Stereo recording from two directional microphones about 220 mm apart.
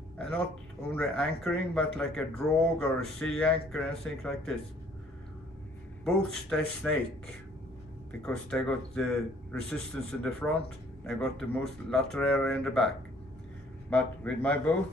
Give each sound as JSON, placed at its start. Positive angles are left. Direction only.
{"t": 0.8, "sound": "speech", "side_deg": 0}
{"t": 6.0, "sound": "speech", "side_deg": 0}
{"t": 8.2, "sound": "speech", "side_deg": 5}